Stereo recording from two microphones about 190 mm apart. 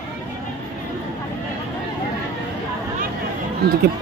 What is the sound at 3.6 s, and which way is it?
Speech, 55° right (ahead or behind).